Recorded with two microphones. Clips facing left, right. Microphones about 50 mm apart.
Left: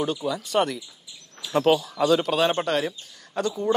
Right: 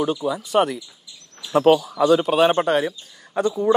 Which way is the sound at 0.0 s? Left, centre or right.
Centre.